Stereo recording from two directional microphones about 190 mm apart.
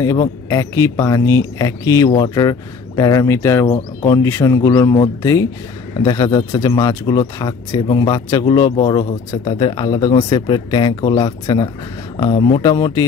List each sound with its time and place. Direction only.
0.0 s speech: 15° left (ahead or behind)